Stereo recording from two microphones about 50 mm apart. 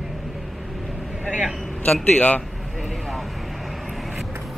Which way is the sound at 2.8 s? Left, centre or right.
Centre.